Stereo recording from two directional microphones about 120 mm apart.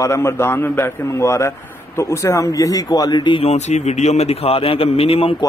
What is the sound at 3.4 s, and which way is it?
A man's voice, 65° left (ahead or behind).